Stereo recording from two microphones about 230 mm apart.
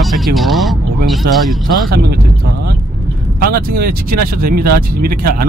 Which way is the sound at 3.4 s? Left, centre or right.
Right.